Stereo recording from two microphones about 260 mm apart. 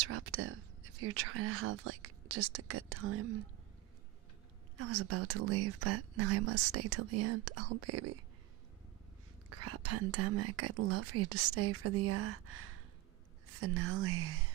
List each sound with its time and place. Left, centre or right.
0.1 s speech: right
4.7 s speech: right
9.5 s speech: right